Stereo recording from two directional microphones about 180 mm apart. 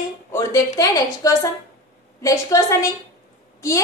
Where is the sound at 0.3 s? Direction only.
15° left (ahead or behind).